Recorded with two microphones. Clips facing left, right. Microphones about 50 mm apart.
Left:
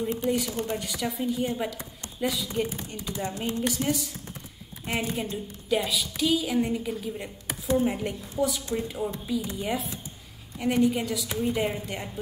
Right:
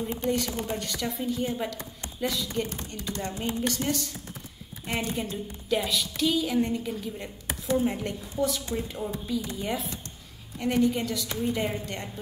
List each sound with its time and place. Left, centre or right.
0.2 s a woman's voice: centre